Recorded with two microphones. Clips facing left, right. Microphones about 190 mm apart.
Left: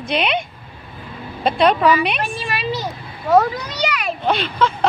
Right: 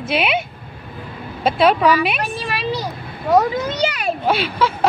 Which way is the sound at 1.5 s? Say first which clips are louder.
Even; 5° right (ahead or behind).